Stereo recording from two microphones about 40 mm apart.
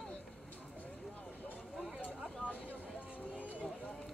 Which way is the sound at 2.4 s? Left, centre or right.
Right.